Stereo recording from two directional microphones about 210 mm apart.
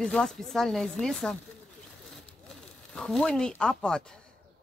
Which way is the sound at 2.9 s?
5° left (ahead or behind).